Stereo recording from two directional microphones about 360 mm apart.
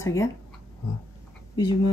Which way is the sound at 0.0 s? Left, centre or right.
Centre.